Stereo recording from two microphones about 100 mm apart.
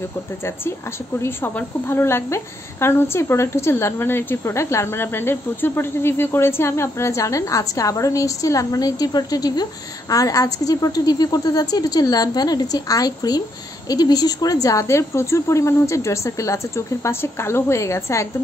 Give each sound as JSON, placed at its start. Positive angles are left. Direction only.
{"t": 0.4, "sound": "a woman's voice", "side_deg": 25}